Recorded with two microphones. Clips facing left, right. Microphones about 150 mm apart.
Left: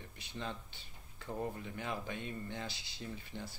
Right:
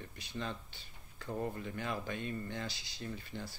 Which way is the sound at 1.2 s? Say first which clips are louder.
Right 2 dB; 15° left (ahead or behind).